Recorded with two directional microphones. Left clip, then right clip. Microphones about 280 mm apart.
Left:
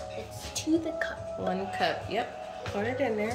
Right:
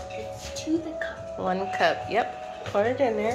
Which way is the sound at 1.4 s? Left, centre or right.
Centre.